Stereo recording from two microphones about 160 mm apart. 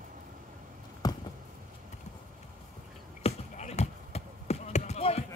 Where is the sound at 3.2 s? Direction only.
45° left (ahead or behind).